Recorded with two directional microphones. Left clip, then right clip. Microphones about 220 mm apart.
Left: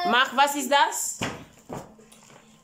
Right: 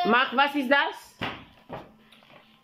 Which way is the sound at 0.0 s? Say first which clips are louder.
Left 1 dB; centre (ahead or behind).